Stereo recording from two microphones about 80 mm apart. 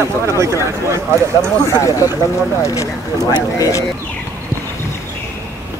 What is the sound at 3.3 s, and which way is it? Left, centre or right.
Speech, left.